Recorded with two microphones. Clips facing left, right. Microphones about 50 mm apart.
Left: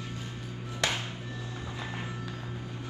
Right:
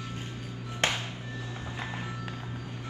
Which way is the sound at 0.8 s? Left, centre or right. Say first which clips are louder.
Right 2 dB; right.